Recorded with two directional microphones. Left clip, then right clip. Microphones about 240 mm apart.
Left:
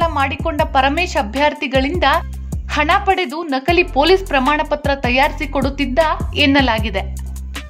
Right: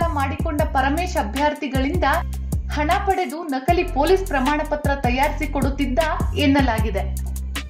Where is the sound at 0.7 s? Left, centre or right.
Left.